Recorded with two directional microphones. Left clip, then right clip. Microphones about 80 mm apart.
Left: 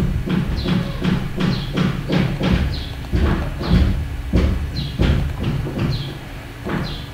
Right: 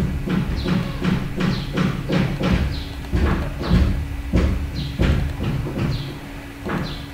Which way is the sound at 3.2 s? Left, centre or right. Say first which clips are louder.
Left 1 dB; right.